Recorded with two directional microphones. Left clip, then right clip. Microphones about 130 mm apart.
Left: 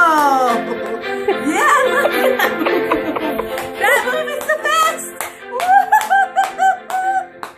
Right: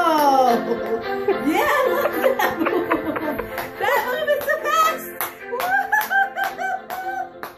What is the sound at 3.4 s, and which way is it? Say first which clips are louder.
Music: left 6 dB; 90° left.